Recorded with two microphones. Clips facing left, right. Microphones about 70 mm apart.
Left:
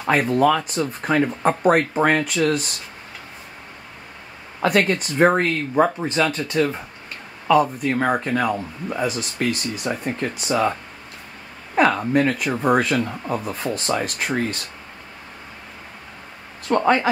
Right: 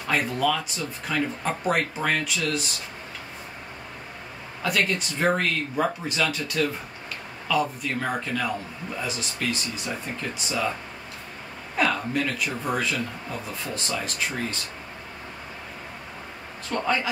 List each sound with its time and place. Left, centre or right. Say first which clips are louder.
0.0 s speech: left 7 dB; left
4.6 s speech: left 6 dB; left
7.5 s speech: left 8 dB; left
12.1 s speech: left 7 dB; left
16.6 s speech: left 8 dB; left